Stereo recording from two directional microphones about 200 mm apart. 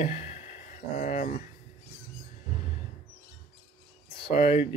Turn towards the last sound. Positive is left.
turn(degrees=30)  # may be behind; listen again after turning